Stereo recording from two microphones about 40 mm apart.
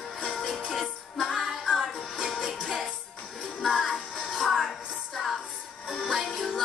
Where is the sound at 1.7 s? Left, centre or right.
Centre.